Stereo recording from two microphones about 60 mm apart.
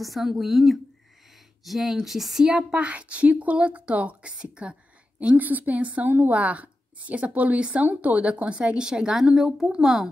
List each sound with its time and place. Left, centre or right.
0.0 s speech: centre
2.7 s a woman's voice: right
5.3 s a woman's voice: right; by 10.0 s centre